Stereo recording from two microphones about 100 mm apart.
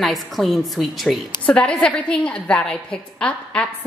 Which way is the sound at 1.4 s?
10° left (ahead or behind).